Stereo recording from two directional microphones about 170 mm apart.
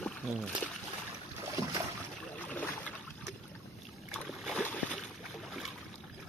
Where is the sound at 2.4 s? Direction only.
10° left (ahead or behind).